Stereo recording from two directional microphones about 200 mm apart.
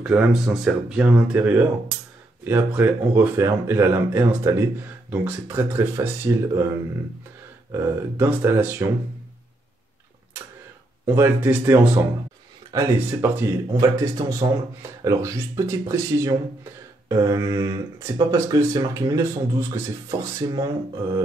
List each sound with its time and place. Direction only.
0.0 s speech: 5° right (ahead or behind)
11.1 s speech: 10° right (ahead or behind)